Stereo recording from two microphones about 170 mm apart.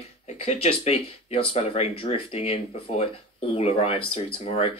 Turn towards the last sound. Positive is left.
turn(degrees=40)  # may be behind; listen again after turning